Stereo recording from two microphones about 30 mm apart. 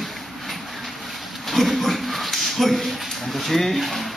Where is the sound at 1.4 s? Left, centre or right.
Centre.